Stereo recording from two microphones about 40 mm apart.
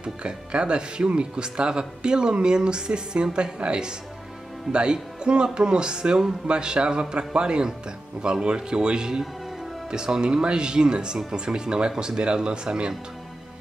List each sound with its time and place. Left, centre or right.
0.0 s speech: right